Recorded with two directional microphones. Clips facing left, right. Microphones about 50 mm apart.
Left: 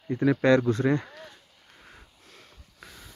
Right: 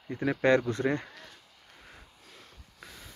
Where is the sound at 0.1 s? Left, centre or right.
Centre.